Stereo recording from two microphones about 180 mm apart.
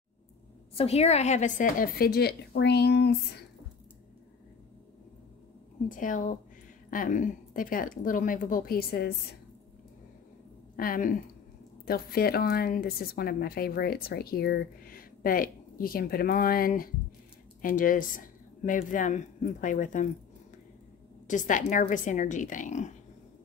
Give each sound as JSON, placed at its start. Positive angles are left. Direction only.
{"t": 0.7, "sound": "a woman's voice", "side_deg": 35}
{"t": 5.9, "sound": "speech", "side_deg": 45}
{"t": 10.8, "sound": "a woman's voice", "side_deg": 50}
{"t": 21.3, "sound": "speech", "side_deg": 45}